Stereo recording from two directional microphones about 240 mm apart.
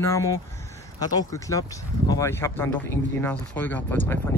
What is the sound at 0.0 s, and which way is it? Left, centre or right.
Speech, centre.